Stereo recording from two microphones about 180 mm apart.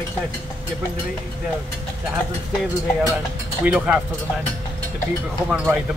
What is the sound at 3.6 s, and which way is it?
Speech, 10° right (ahead or behind).